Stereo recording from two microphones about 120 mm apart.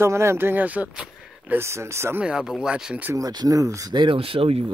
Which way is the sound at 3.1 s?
30° right (ahead or behind).